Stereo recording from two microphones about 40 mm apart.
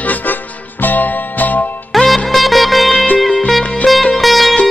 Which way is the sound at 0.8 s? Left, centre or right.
Left.